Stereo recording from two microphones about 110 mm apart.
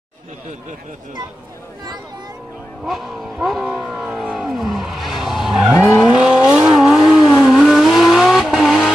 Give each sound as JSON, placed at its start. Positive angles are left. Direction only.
{"t": 2.8, "sound": "vehicle", "side_deg": -5}
{"t": 5.8, "sound": "vehicle", "side_deg": 25}
{"t": 6.0, "sound": "vehicle", "side_deg": -10}